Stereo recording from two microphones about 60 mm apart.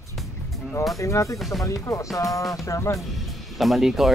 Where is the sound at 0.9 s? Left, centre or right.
Left.